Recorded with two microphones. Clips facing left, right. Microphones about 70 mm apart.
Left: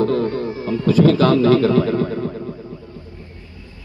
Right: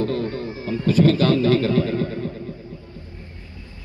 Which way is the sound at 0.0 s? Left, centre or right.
Left.